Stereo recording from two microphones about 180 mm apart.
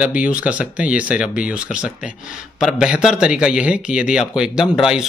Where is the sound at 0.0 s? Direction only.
5° right (ahead or behind).